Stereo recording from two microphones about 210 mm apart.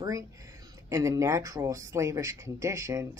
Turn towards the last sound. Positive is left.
turn(degrees=-15)  # may be behind; listen again after turning